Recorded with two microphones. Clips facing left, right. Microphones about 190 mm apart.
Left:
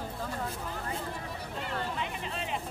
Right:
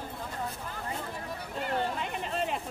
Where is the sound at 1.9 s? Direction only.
45° right (ahead or behind).